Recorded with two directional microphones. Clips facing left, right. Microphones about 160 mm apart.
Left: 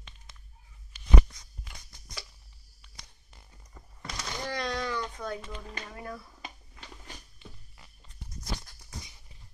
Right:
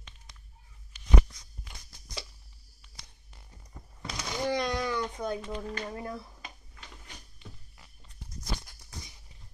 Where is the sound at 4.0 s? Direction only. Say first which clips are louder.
Right 4 dB; 15° right (ahead or behind).